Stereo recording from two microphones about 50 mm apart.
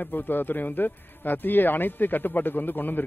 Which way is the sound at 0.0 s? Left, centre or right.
Left.